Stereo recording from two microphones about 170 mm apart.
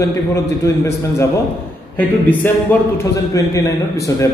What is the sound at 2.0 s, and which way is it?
A man's voice, 10° left (ahead or behind).